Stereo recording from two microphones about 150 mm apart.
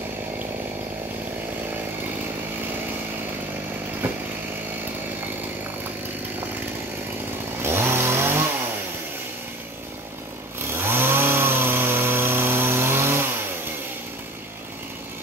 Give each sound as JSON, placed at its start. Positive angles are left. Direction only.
{"t": 4.0, "sound": "chainsaw", "side_deg": -15}
{"t": 7.6, "sound": "chainsaw", "side_deg": -15}
{"t": 10.7, "sound": "chainsaw", "side_deg": -15}